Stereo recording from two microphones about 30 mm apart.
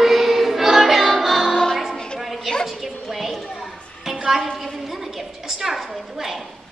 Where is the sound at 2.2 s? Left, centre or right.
Centre.